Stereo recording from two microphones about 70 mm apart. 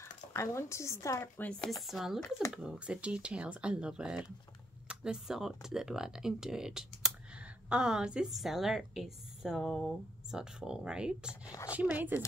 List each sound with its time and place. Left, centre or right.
0.0 s speech: left
1.4 s speech: centre
1.7 s a woman's voice: centre
2.9 s a woman's voice: centre
11.7 s speech: right